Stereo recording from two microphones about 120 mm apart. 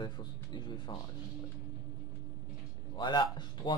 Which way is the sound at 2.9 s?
40° left (ahead or behind).